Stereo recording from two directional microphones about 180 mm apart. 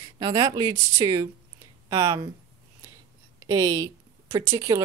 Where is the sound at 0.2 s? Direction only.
20° right (ahead or behind).